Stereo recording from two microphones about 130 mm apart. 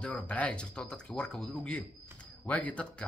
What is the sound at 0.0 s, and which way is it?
A man's voice, 10° left (ahead or behind).